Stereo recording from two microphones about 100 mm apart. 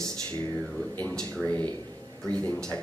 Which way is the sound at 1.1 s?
5° left (ahead or behind).